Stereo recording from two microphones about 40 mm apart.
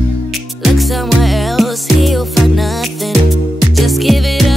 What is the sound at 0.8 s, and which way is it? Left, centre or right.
Music, centre.